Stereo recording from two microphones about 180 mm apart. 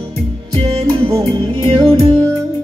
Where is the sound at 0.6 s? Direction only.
25° right (ahead or behind).